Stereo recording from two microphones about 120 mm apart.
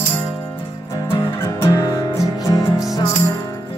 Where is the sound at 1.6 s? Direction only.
30° left (ahead or behind).